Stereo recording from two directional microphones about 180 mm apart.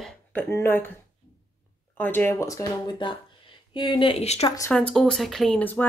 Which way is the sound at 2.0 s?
10° left (ahead or behind).